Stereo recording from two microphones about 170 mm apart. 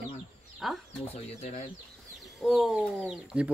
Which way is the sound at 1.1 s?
40° left (ahead or behind).